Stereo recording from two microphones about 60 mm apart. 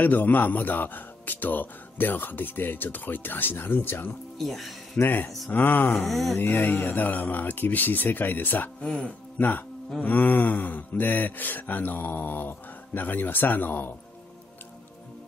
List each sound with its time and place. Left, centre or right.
0.0 s a man's voice: left
4.4 s speech: centre
5.0 s a man's voice: left
6.0 s a sound: centre
6.3 s a man's voice: left
9.4 s a man's voice: left